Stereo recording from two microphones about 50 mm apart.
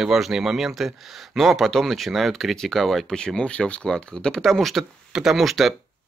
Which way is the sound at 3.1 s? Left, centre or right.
Centre.